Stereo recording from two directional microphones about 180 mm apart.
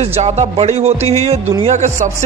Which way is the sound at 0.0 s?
40° right (ahead or behind).